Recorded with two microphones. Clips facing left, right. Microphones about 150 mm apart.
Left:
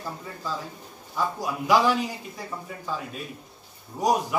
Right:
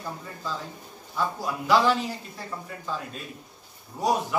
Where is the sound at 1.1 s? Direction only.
10° left (ahead or behind).